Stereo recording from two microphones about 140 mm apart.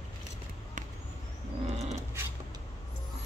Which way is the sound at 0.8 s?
65° right (ahead or behind).